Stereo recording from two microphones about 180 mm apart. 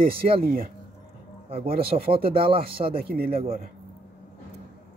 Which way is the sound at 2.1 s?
30° right (ahead or behind).